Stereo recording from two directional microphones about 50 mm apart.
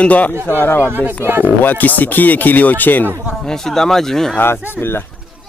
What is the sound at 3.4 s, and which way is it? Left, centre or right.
Speech, centre.